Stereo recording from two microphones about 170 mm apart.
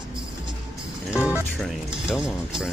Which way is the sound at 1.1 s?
5° right (ahead or behind).